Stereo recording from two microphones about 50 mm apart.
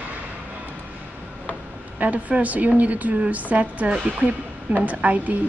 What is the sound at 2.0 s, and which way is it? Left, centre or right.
A woman's voice, right.